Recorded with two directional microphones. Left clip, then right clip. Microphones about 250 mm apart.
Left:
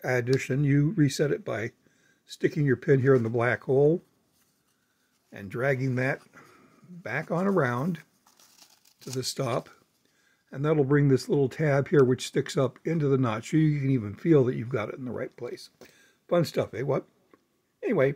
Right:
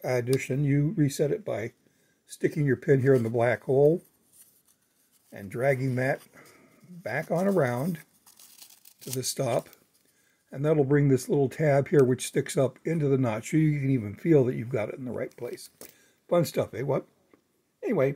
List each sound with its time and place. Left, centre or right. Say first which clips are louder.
0.0 s speech: left 1 dB; centre
5.3 s speech: right 1 dB; centre
8.5 s crumpling: right 2 dB; centre
9.2 s speech: right 2 dB; centre